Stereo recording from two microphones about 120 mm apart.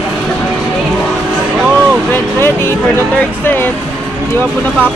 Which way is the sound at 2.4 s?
20° left (ahead or behind).